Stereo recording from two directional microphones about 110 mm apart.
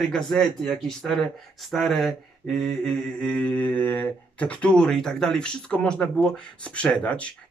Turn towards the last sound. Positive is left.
turn(degrees=10)  # may be behind; listen again after turning